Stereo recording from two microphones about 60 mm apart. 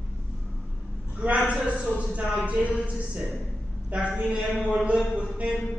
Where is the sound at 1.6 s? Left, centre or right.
Centre.